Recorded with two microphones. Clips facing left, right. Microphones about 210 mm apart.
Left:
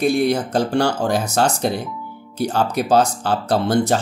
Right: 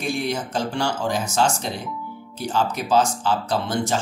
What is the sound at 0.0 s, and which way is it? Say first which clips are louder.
Speech: left 8 dB; 65° left (ahead or behind).